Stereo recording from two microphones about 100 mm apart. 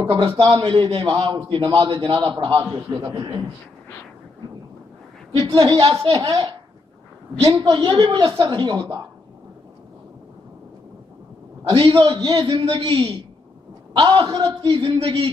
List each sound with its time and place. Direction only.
0.3 s a woman's voice: 50° right (ahead or behind)
2.9 s speech: 30° right (ahead or behind)
3.2 s a woman's voice: 45° right (ahead or behind)
5.4 s a woman's voice: 50° right (ahead or behind)
6.1 s a woman's voice: 45° right (ahead or behind)
11.7 s a man's voice: 55° right (ahead or behind)